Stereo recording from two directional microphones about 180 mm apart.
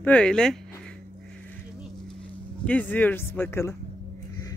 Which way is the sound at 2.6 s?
10° left (ahead or behind).